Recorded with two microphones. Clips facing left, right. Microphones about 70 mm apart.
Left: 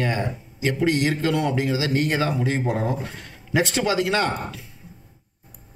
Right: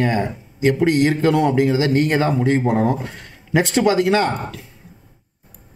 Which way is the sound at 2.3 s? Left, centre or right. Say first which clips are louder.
Right 7 dB; right.